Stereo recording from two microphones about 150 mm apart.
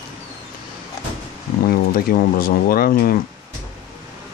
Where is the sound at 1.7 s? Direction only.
70° left (ahead or behind).